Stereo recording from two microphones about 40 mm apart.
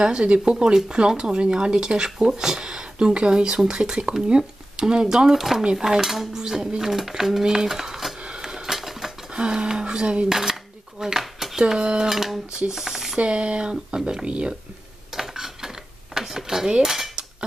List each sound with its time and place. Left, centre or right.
0.0 s speech: right
5.9 s speech: centre
8.4 s a sound: centre
8.7 s a sound: centre
9.3 s speech: right
10.3 s dishes: centre
11.7 s speech: centre
13.2 s speech: right
15.1 s a sound: centre
16.8 s cutlery: centre